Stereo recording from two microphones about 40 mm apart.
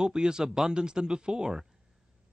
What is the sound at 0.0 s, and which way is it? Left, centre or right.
Speech, centre.